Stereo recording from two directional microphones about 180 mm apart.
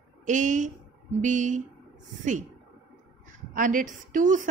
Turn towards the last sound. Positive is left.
turn(degrees=-45)  # may be behind; listen again after turning